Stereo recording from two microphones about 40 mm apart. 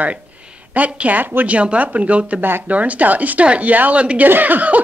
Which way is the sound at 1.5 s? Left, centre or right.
Right.